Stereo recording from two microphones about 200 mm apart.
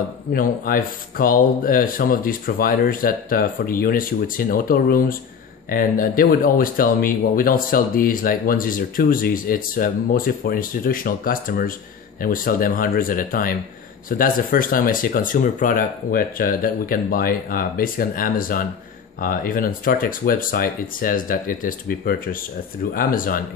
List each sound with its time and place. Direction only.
0.3 s speech: 45° left (ahead or behind)